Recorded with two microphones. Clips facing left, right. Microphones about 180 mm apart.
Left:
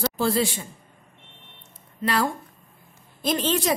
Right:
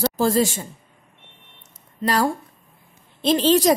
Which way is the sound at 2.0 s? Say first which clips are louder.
Right 4 dB; 40° right (ahead or behind).